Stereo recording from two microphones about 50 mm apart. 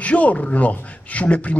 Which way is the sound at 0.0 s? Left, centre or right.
Left.